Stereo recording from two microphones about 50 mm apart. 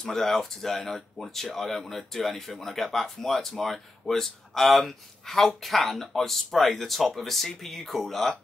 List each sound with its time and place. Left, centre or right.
0.0 s speech: centre